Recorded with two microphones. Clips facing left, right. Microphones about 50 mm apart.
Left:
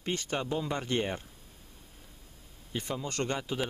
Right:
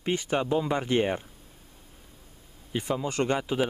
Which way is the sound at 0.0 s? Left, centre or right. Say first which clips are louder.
Right 6 dB; centre.